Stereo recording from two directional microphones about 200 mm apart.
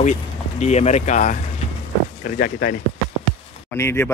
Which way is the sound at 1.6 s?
35° left (ahead or behind).